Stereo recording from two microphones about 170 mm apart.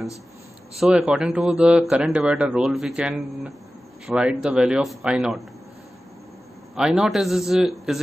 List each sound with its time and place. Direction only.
0.7 s speech: 5° right (ahead or behind)
6.7 s speech: 5° right (ahead or behind)